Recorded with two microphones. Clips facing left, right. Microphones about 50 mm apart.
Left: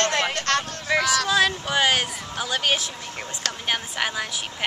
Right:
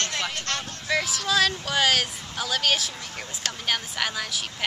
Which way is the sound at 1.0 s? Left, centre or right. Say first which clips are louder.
Left 7 dB; left.